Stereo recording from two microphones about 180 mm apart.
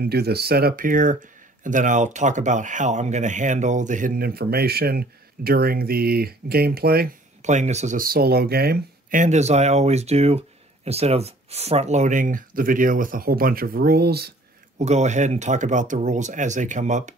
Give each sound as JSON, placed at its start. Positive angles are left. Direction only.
{"t": 0.0, "sound": "speech", "side_deg": -60}
{"t": 7.4, "sound": "speech", "side_deg": -40}
{"t": 14.8, "sound": "speech", "side_deg": -40}